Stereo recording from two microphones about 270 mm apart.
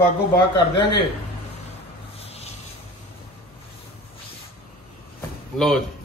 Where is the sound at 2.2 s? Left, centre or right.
Left.